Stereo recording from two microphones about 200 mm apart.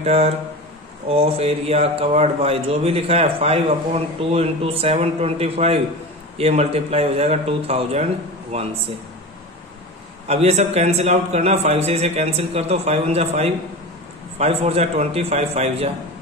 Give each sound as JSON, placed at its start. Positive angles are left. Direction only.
{"t": 0.0, "sound": "a man's voice", "side_deg": -30}
{"t": 10.2, "sound": "a man's voice", "side_deg": -30}